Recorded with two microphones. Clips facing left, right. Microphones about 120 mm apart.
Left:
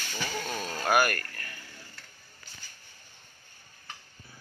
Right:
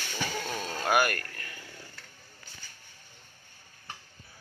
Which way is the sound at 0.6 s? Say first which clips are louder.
Left 1 dB; 20° right (ahead or behind).